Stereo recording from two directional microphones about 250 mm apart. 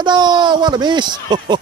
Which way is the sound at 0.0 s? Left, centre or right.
Centre.